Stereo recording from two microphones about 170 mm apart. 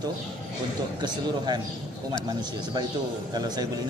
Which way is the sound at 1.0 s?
25° right (ahead or behind).